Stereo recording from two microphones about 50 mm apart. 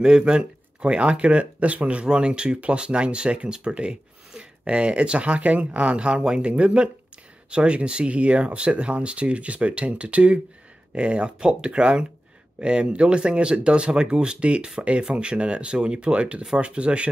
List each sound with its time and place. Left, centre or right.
0.0 s speech: centre